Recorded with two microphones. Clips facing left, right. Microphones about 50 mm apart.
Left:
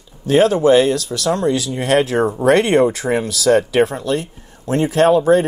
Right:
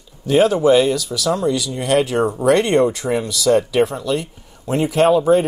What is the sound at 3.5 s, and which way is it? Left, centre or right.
Speech, left.